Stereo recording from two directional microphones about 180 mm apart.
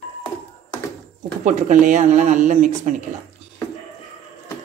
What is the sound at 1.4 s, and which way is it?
Speech, 45° right (ahead or behind).